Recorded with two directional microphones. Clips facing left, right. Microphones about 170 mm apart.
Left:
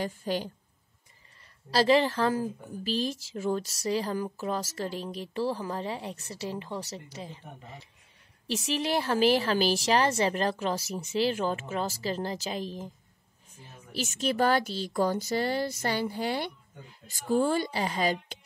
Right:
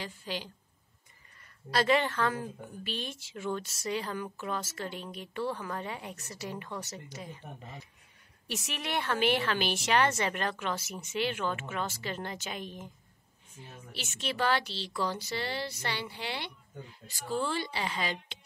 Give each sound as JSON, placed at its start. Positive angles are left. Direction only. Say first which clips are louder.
{"t": 0.0, "sound": "speech", "louder": "left 8 dB", "side_deg": 45}
{"t": 1.7, "sound": "a woman's voice", "louder": "left 4 dB", "side_deg": 30}
{"t": 13.9, "sound": "a woman's voice", "louder": "left 7 dB", "side_deg": 40}